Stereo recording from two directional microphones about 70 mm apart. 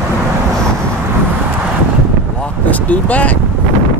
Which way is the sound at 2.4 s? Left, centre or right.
Left.